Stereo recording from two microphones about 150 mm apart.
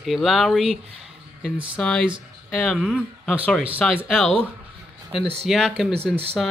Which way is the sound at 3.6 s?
5° right (ahead or behind).